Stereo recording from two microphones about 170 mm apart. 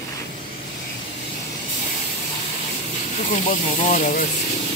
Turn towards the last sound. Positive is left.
turn(degrees=50)  # may be behind; listen again after turning